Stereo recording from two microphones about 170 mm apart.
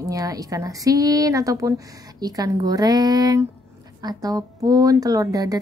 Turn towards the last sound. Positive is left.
turn(degrees=-20)  # may be behind; listen again after turning